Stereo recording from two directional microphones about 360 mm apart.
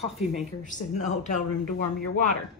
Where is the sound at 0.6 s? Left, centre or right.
Left.